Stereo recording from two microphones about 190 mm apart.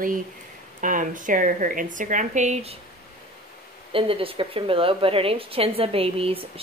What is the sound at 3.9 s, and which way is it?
A woman's voice, 30° right (ahead or behind).